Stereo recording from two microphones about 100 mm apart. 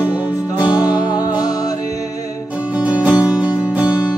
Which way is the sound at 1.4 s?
35° left (ahead or behind).